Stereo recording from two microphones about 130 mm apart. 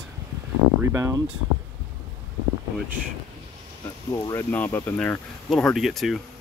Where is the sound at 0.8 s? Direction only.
25° right (ahead or behind).